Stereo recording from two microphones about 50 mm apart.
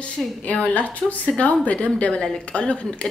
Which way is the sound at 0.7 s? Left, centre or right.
Left.